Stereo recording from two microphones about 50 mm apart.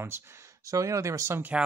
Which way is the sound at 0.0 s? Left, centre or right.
Right.